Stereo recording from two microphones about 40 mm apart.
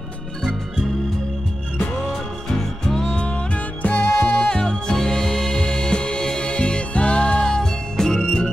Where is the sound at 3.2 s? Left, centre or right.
Left.